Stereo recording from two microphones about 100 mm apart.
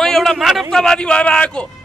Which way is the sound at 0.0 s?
5° left (ahead or behind).